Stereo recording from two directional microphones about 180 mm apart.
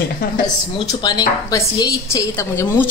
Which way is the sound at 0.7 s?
20° left (ahead or behind).